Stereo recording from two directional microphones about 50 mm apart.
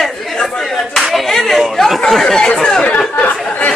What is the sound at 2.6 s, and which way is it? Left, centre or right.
Chatter, centre.